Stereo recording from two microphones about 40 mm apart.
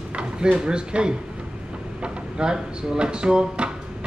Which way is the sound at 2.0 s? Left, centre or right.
Right.